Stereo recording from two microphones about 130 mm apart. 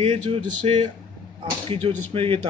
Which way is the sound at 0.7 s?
45° right (ahead or behind).